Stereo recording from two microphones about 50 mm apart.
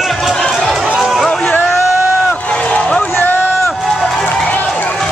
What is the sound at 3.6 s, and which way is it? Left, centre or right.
Run, centre.